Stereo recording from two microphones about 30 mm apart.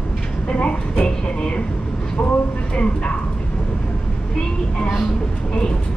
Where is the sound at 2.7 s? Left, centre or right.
Left.